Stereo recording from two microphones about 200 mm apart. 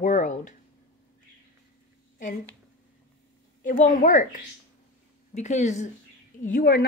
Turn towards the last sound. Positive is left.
turn(degrees=45)  # may be behind; listen again after turning